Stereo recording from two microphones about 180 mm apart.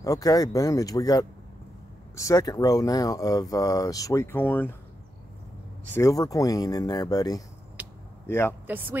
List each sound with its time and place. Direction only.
0.0 s speech: 20° left (ahead or behind)
5.9 s speech: 20° left (ahead or behind)
7.8 s a sound: 10° right (ahead or behind)
8.3 s speech: 15° left (ahead or behind)
8.6 s speech: 10° right (ahead or behind)